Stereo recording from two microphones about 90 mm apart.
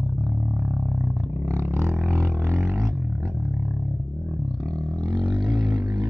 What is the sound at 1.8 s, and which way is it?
Music, 30° right (ahead or behind).